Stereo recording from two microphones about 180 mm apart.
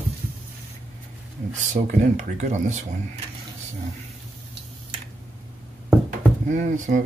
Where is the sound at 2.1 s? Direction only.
40° right (ahead or behind).